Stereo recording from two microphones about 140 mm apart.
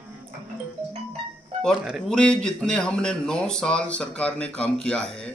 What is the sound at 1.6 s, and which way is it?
A man's voice, centre (ahead or behind).